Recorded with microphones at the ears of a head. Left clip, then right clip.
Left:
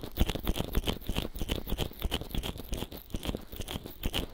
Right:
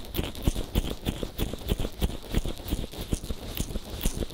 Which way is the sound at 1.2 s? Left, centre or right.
Right.